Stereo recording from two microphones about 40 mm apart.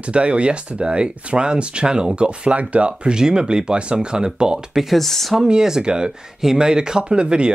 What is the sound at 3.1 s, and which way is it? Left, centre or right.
Speech, centre.